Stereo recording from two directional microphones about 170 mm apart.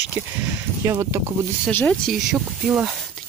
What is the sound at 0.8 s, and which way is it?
Speech, 15° right (ahead or behind).